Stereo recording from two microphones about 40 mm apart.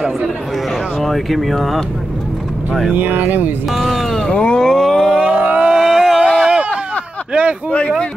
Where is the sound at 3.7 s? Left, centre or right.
Centre.